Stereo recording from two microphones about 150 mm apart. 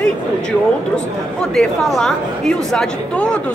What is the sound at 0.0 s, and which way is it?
A woman's voice, 5° left (ahead or behind).